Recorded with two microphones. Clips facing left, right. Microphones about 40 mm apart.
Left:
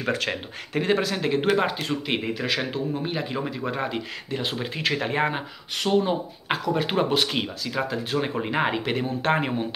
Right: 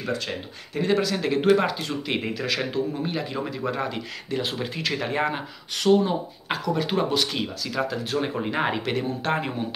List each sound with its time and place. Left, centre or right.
0.8 s speech: left
1.7 s speech: left
2.3 s speech: centre
7.4 s speech: centre
8.9 s speech: centre